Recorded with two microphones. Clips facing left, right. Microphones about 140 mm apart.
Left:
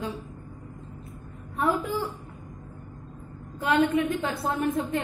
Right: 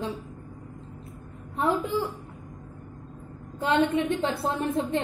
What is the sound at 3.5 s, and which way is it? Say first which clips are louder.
A woman's voice: even; 25° right (ahead or behind).